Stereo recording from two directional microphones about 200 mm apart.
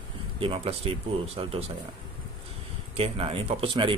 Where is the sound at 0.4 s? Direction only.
30° right (ahead or behind).